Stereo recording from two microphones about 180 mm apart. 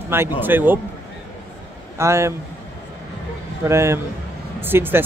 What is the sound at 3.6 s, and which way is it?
Speech, 15° right (ahead or behind).